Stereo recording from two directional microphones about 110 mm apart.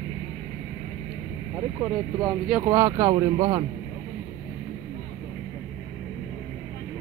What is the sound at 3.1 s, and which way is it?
Speech, 45° right (ahead or behind).